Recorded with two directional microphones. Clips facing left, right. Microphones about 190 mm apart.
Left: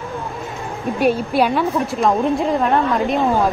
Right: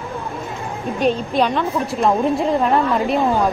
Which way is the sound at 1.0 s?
10° left (ahead or behind).